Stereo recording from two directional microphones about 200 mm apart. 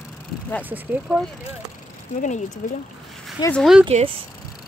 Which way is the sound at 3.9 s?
30° right (ahead or behind).